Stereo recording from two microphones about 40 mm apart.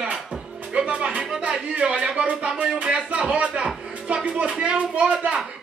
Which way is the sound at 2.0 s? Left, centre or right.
Centre.